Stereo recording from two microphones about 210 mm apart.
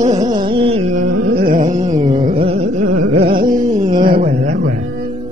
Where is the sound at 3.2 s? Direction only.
40° right (ahead or behind).